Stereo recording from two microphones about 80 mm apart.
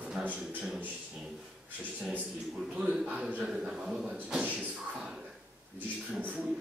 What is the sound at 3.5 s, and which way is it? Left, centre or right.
Speech, centre.